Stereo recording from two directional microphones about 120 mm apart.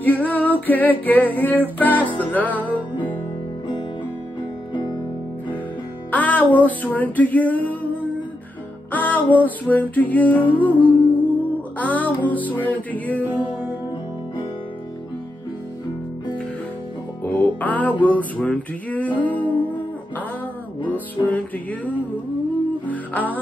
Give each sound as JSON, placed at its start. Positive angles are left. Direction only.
{"t": 0.0, "sound": "music", "side_deg": 15}
{"t": 2.6, "sound": "music", "side_deg": -15}
{"t": 6.1, "sound": "music", "side_deg": 15}
{"t": 8.9, "sound": "music", "side_deg": 15}
{"t": 13.2, "sound": "music", "side_deg": -15}
{"t": 17.2, "sound": "music", "side_deg": 15}
{"t": 20.8, "sound": "music", "side_deg": 15}